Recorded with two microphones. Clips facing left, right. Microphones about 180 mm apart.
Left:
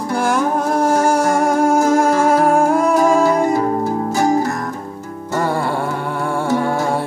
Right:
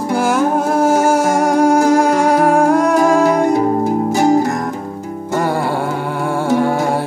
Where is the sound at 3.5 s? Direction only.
15° right (ahead or behind).